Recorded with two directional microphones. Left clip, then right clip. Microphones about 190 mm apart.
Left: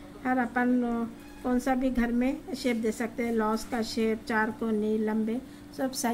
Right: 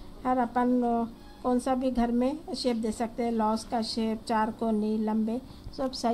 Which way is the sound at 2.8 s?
40° right (ahead or behind).